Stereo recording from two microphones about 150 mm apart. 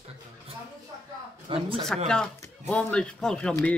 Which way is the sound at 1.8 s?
5° left (ahead or behind).